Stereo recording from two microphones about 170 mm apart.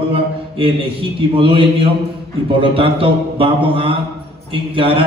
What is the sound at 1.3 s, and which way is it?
A man's voice, 30° right (ahead or behind).